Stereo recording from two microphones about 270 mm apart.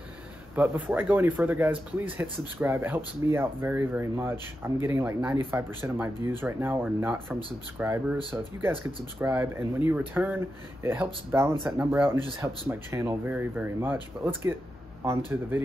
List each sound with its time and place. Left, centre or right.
0.6 s speech: centre
8.2 s speech: centre
9.2 s speech: centre